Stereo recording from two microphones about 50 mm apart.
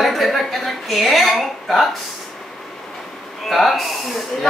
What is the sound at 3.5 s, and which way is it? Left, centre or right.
Speech, centre.